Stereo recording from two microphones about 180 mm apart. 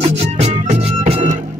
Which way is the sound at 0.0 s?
35° right (ahead or behind).